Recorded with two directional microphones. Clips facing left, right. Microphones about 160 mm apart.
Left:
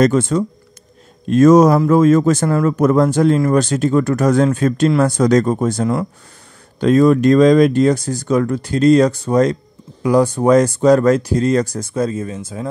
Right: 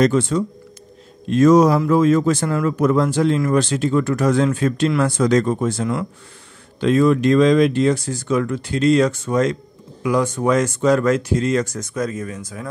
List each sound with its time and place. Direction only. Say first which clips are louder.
0.0 s speech: left 3 dB; 45° left (ahead or behind); by 12.6 s 25° left (ahead or behind)